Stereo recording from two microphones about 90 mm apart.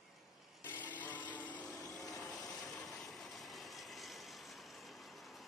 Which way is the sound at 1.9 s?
5° left (ahead or behind).